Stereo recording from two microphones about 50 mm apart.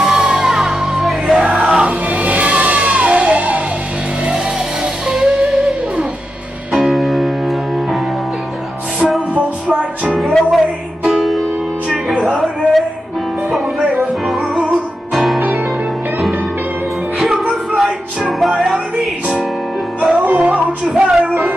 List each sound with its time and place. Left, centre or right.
0.0 s music: centre
2.0 s music: right
5.0 s music: centre
10.0 s music: centre
13.9 s music: centre
17.2 s music: centre
20.1 s music: centre